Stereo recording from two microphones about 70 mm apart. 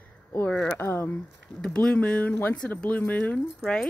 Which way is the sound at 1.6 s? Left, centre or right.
Centre.